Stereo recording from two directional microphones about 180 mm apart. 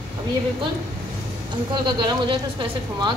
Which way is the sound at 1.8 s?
25° right (ahead or behind).